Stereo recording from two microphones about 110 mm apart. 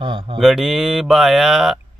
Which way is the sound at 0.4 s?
5° right (ahead or behind).